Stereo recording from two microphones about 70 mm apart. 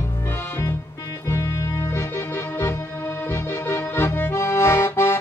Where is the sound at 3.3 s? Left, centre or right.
Left.